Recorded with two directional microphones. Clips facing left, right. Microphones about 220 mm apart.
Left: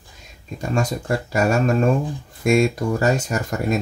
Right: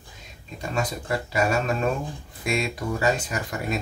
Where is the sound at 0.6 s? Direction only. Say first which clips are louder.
Left 5 dB; 45° left (ahead or behind).